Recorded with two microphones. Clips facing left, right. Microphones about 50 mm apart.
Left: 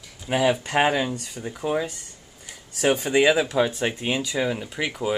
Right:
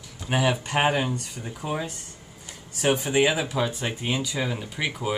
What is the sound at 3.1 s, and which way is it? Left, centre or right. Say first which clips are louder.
Speech: left 5 dB; left.